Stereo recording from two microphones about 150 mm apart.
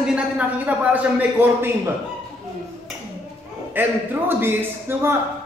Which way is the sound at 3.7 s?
15° right (ahead or behind).